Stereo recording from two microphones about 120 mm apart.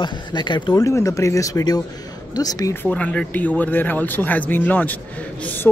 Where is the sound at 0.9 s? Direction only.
25° left (ahead or behind).